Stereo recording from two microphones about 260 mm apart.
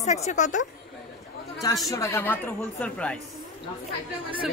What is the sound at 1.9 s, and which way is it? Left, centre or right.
A woman's voice, centre.